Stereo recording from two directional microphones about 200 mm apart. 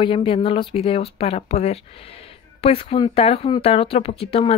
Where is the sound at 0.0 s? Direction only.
25° left (ahead or behind).